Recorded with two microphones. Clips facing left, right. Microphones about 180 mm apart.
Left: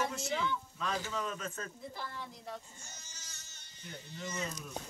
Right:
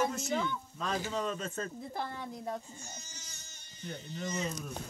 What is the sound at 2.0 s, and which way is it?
Speech, 50° right (ahead or behind).